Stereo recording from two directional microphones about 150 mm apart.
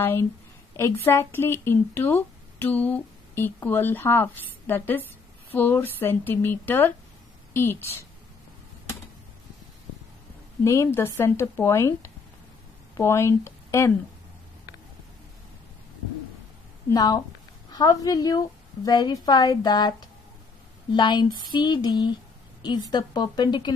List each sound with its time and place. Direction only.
0.0 s speech: 15° left (ahead or behind)
10.6 s speech: 20° left (ahead or behind)
16.9 s a woman's voice: 25° left (ahead or behind)
20.9 s speech: 30° left (ahead or behind)